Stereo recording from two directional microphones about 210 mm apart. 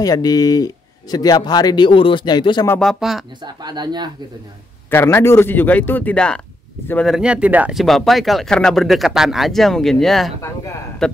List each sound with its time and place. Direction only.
0.0 s speech: 20° left (ahead or behind)
2.8 s speech: centre (ahead or behind)
3.4 s speech: 20° right (ahead or behind)
4.9 s speech: 10° left (ahead or behind)
10.4 s a sound: 15° left (ahead or behind)
11.0 s speech: centre (ahead or behind)